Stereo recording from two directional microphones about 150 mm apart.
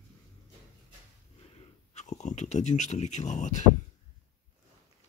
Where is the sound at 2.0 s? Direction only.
50° left (ahead or behind).